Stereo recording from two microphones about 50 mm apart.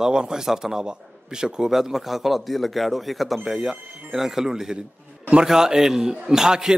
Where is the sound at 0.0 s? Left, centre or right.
Centre.